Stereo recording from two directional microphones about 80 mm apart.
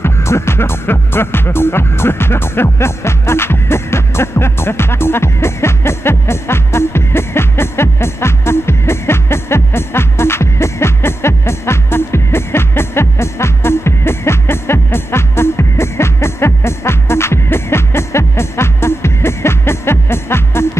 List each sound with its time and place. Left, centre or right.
0.0 s music: left